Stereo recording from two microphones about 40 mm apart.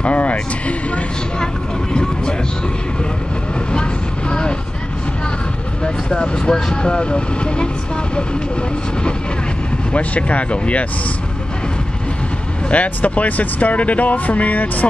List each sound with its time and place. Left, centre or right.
0.0 s vehicle: left
4.3 s vehicle: left
6.0 s speech: left
9.9 s speech: left
12.6 s speech: left